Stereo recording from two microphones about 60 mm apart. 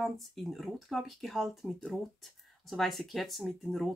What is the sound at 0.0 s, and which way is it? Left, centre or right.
Speech, centre.